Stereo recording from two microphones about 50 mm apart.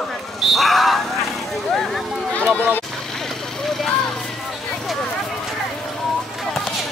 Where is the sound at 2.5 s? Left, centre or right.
Left.